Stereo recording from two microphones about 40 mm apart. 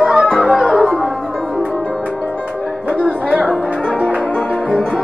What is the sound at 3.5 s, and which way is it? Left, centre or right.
Music, left.